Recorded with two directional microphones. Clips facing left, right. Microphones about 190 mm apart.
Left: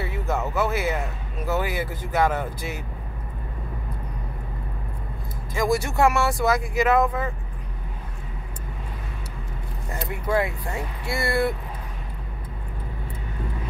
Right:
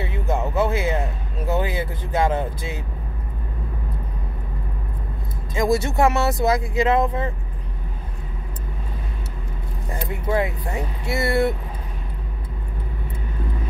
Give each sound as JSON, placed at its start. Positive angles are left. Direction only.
{"t": 0.0, "sound": "a sound", "side_deg": -20}
{"t": 1.5, "sound": "speech", "side_deg": -20}
{"t": 5.5, "sound": "speech", "side_deg": -20}
{"t": 10.0, "sound": "speech", "side_deg": -20}